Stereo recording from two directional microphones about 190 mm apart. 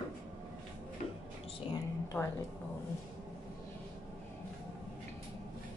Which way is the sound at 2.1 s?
15° left (ahead or behind).